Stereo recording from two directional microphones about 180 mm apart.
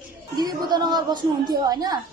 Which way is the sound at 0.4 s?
25° right (ahead or behind).